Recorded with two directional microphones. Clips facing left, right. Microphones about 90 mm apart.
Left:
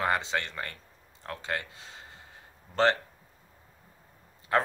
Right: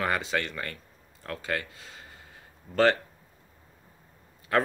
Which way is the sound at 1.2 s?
25° left (ahead or behind).